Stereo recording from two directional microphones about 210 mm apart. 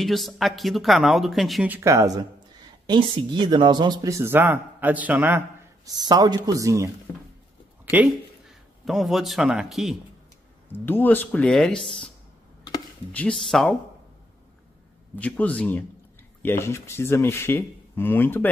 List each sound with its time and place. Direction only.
0.0 s speech: centre (ahead or behind)
1.8 s speech: 15° right (ahead or behind)
7.1 s speech: 15° left (ahead or behind)
7.9 s a man's voice: 5° right (ahead or behind)
10.7 s speech: 10° left (ahead or behind)
13.1 s speech: 5° left (ahead or behind)
15.1 s speech: 5° left (ahead or behind)